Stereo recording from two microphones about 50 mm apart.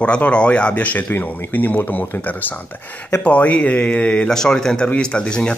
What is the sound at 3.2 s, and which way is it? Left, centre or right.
Speech, left.